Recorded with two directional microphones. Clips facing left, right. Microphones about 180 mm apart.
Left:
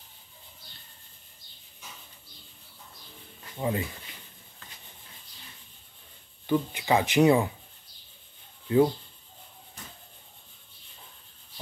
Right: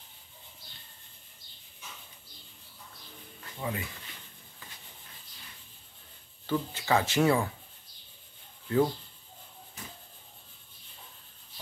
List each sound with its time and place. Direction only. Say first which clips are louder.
3.6 s speech: left 6 dB; 20° left (ahead or behind)
6.4 s speech: left 5 dB; 15° left (ahead or behind)
8.6 s speech: left 4 dB; 15° left (ahead or behind)